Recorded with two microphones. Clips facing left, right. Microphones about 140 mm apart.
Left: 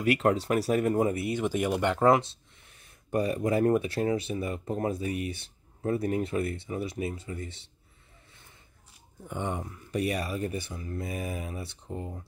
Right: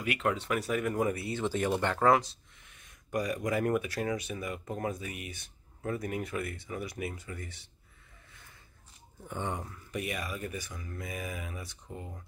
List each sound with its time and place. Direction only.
0.0 s speech: 40° left (ahead or behind)
8.3 s a sound: 25° left (ahead or behind)
9.3 s speech: 20° left (ahead or behind)
9.8 s speech: 35° left (ahead or behind)